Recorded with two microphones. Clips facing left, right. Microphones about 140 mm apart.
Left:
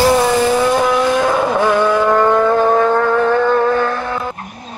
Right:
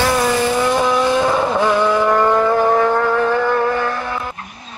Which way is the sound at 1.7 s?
15° right (ahead or behind).